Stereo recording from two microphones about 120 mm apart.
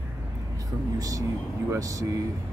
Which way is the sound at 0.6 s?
30° right (ahead or behind).